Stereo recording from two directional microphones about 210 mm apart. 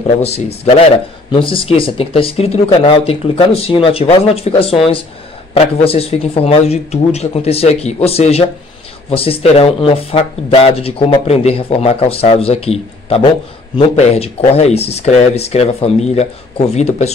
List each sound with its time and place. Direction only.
0.2 s speech: 30° left (ahead or behind)